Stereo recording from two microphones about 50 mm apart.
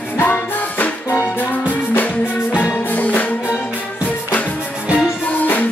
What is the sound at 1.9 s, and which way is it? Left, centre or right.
Music, left.